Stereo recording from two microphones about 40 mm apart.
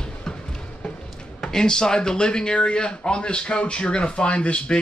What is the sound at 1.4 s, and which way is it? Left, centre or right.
Speech, centre.